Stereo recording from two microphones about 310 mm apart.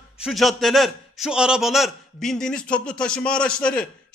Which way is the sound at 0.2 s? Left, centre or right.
Centre.